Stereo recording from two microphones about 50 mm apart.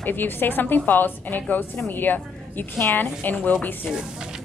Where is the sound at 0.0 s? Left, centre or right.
Left.